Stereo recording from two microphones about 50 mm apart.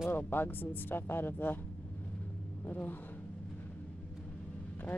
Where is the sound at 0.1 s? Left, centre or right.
Left.